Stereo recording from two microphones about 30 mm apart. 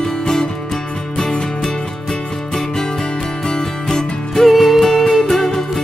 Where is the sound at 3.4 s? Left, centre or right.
Left.